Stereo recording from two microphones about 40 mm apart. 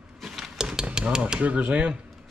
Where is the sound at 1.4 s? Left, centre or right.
Right.